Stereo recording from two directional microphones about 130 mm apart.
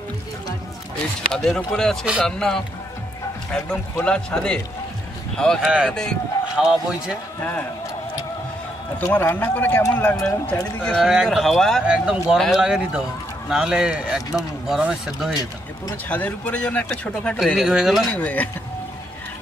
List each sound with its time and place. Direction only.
1.3 s speech: 5° left (ahead or behind)
5.6 s speech: 10° right (ahead or behind)
5.9 s speech: 5° left (ahead or behind)
7.3 s a man's voice: 15° left (ahead or behind)
9.0 s speech: 15° left (ahead or behind)
10.2 s speech: 10° left (ahead or behind)
11.1 s speech: 5° right (ahead or behind)
16.1 s speech: 10° left (ahead or behind)
17.6 s speech: 5° right (ahead or behind)
18.1 s speech: 10° left (ahead or behind)